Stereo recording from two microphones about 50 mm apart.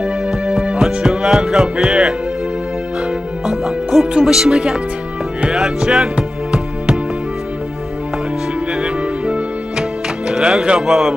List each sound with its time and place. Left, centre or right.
0.0 s music: centre
3.4 s music: centre
8.8 s music: centre
10.9 s speech: centre